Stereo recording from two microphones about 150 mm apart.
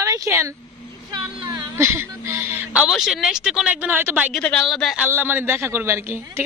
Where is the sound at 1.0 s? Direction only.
30° right (ahead or behind).